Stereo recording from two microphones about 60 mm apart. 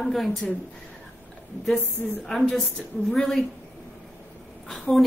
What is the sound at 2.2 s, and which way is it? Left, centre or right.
A woman's voice, centre.